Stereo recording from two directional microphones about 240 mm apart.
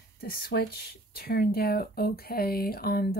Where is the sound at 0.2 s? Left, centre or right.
Left.